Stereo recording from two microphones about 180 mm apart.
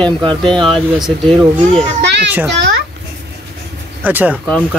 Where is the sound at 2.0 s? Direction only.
70° right (ahead or behind).